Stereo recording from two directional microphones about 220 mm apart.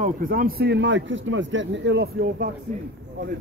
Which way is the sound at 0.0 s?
40° right (ahead or behind).